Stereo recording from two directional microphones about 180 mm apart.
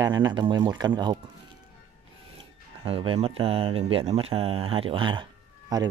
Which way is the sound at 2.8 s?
30° right (ahead or behind).